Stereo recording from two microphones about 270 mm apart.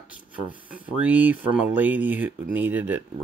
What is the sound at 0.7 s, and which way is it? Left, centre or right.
Speech, centre.